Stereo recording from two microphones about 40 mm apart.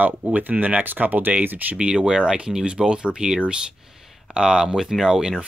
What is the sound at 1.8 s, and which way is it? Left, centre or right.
Speech, right.